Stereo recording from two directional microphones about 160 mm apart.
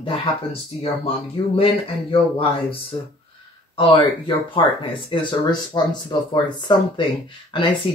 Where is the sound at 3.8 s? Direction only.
30° left (ahead or behind).